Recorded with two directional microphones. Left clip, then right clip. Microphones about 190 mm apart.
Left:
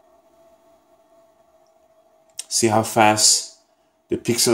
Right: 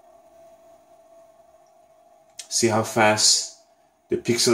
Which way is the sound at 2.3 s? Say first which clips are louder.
Left 3 dB; 40° left (ahead or behind).